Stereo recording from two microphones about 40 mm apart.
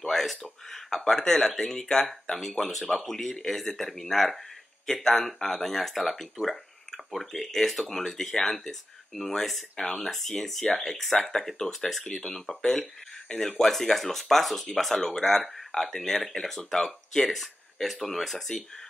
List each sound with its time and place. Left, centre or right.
0.0 s a sound: centre
0.4 s speech: centre
9.8 s speech: centre
10.0 s speech: centre